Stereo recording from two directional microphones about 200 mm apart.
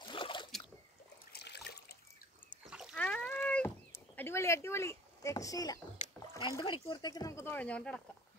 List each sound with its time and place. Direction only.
0.1 s boat: 25° left (ahead or behind)
1.3 s water: 55° left (ahead or behind)
2.6 s rowboat: centre (ahead or behind); by 5.8 s 15° left (ahead or behind)
6.1 s speech: 15° left (ahead or behind)